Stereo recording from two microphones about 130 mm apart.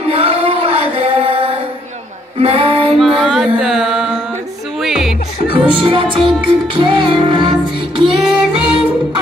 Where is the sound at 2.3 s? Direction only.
50° right (ahead or behind).